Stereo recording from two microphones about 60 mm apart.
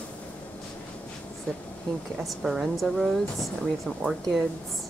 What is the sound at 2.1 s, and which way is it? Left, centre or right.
Speech, centre.